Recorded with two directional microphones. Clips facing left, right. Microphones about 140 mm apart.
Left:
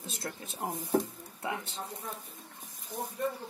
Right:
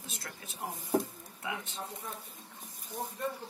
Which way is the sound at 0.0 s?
30° left (ahead or behind).